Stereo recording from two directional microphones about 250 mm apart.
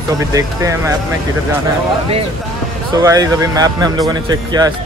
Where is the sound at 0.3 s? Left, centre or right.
Centre.